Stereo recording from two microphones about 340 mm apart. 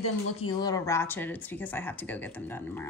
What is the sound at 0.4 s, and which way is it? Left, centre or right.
Speech, centre.